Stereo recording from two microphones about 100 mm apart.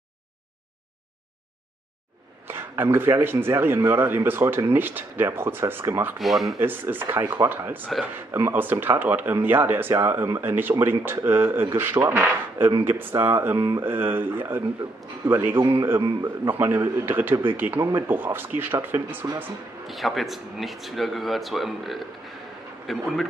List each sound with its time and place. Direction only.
2.4 s a man's voice: 20° right (ahead or behind)
6.1 s speech: centre (ahead or behind)
6.6 s a man's voice: 20° right (ahead or behind)
19.9 s speech: centre (ahead or behind)